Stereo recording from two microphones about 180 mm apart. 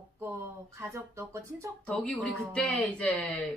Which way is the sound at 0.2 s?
15° right (ahead or behind).